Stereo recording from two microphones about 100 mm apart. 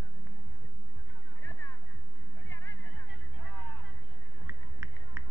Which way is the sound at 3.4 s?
15° left (ahead or behind).